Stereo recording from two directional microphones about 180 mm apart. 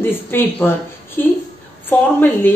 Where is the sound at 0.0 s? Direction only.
10° left (ahead or behind).